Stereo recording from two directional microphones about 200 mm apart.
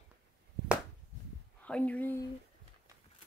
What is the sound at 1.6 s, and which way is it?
Speech, 5° left (ahead or behind).